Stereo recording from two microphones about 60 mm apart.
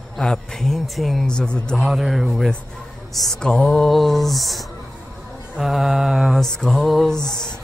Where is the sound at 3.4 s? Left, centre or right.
Centre.